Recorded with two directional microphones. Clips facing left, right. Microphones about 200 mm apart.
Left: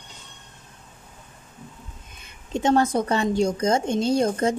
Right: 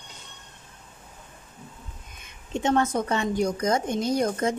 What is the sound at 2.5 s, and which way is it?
A woman's voice, 35° left (ahead or behind).